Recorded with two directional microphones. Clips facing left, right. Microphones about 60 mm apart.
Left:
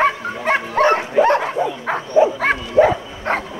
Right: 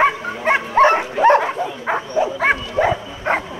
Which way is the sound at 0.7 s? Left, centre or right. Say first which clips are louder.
Right 3 dB; right.